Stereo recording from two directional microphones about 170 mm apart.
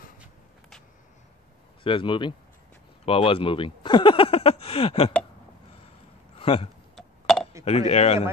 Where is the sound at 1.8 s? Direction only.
30° left (ahead or behind).